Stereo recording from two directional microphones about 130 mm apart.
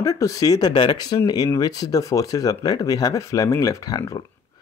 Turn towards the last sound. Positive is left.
turn(degrees=30)  # may be behind; listen again after turning